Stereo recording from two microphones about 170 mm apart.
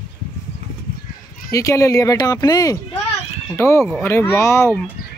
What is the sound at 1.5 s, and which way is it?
Speech, 20° left (ahead or behind).